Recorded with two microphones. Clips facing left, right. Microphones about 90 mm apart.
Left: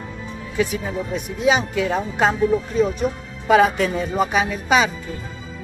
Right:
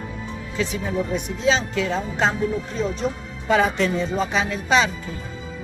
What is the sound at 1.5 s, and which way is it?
Speech, 15° left (ahead or behind).